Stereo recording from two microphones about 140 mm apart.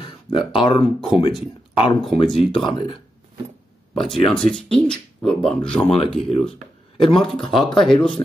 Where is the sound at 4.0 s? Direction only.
Centre (ahead or behind).